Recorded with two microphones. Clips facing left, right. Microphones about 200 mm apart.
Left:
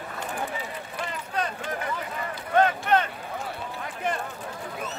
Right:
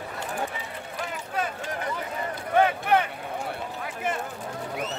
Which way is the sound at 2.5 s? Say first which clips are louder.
Even; 10° right (ahead or behind).